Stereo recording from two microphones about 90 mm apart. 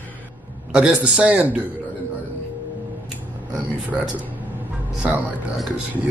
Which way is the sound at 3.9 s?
Centre (ahead or behind).